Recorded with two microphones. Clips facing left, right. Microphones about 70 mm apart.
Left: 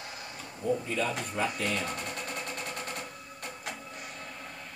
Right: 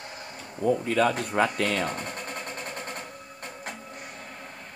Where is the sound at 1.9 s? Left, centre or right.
Right.